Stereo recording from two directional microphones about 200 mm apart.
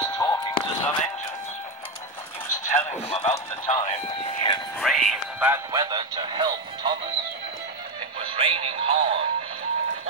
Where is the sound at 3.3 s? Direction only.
15° left (ahead or behind).